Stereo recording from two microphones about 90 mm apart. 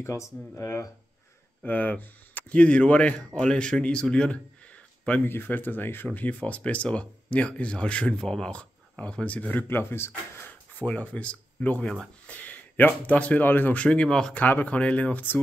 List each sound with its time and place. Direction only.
0.0 s speech: 30° left (ahead or behind)
1.6 s speech: 15° left (ahead or behind)
14.4 s speech: 20° left (ahead or behind)